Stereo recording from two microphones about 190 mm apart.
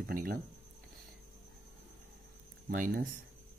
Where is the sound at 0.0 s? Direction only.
50° right (ahead or behind).